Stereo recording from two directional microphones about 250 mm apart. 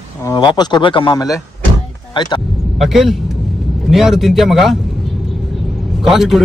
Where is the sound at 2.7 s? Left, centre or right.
Centre.